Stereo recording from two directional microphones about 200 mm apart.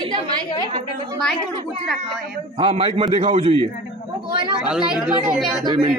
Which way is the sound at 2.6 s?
30° right (ahead or behind).